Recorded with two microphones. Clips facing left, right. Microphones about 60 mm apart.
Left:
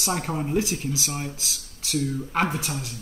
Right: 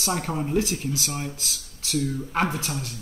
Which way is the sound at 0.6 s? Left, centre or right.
Centre.